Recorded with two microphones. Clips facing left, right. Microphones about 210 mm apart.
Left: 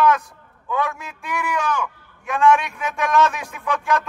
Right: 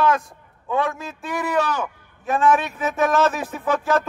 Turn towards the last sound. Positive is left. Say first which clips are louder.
# right 2 dB
turn(degrees=-35)  # may be behind; listen again after turning